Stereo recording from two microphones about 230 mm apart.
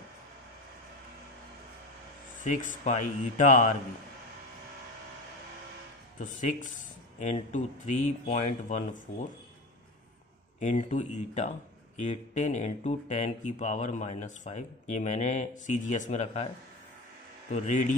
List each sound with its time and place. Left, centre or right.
2.4 s speech: left
6.1 s speech: left
10.6 s speech: left
17.5 s speech: left